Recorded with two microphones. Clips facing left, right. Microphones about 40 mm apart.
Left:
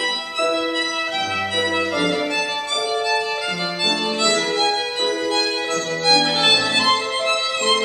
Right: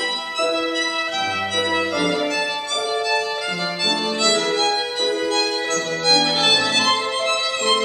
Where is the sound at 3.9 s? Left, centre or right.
Centre.